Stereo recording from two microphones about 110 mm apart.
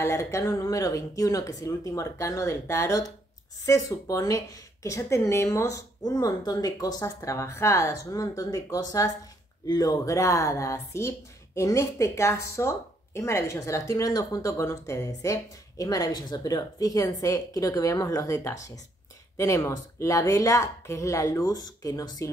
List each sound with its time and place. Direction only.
0.0 s speech: 25° left (ahead or behind)